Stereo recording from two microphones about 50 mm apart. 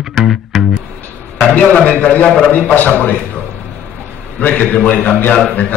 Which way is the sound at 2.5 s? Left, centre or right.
Left.